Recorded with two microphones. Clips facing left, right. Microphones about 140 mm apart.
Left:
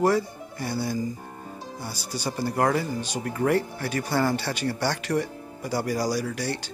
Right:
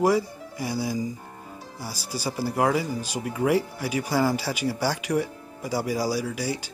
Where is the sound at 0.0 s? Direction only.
10° right (ahead or behind).